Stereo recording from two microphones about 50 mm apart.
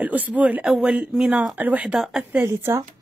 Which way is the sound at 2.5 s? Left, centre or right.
Right.